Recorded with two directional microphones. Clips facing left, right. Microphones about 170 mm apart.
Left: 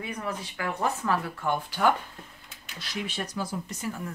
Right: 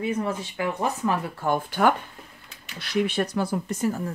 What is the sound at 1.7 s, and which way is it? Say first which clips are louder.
Speech: right 2 dB; 55° right (ahead or behind).